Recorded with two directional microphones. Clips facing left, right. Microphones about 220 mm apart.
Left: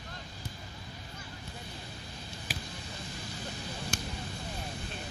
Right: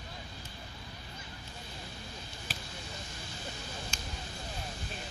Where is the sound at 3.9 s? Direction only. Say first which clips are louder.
Left 7 dB; 55° left (ahead or behind).